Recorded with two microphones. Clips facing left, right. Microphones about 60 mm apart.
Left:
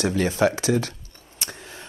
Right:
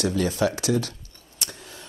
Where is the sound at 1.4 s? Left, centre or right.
Left.